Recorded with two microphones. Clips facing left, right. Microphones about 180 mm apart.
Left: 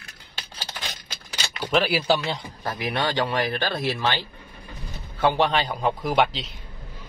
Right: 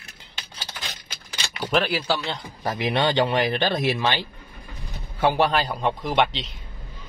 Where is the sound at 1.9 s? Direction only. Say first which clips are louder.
Left 3 dB; 15° left (ahead or behind).